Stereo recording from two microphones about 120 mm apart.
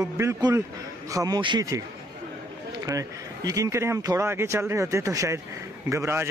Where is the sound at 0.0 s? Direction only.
25° right (ahead or behind).